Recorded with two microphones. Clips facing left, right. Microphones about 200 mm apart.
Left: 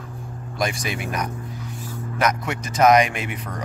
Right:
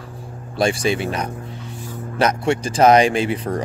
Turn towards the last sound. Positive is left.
turn(degrees=-30)  # may be behind; listen again after turning